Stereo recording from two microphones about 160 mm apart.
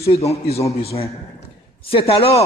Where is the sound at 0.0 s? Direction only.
40° left (ahead or behind).